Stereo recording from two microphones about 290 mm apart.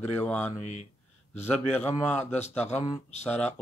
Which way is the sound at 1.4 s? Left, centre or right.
Centre.